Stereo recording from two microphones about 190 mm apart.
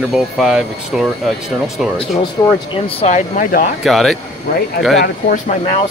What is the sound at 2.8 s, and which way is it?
Speech, 35° left (ahead or behind).